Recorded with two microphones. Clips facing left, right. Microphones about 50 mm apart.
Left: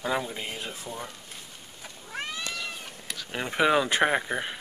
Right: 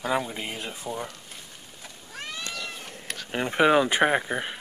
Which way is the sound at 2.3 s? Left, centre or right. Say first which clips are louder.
Right 4 dB; centre.